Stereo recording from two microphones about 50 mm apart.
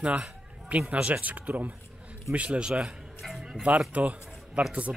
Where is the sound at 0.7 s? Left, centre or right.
Right.